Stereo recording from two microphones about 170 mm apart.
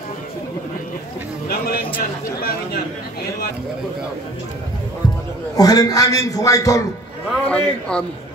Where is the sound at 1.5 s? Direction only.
65° left (ahead or behind).